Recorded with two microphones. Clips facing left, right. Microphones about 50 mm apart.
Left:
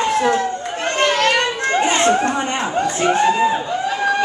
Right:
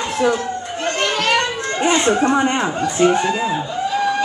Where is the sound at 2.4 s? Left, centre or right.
Centre.